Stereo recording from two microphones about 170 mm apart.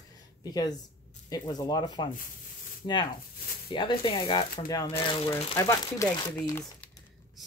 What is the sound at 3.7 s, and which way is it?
Speech, 30° left (ahead or behind).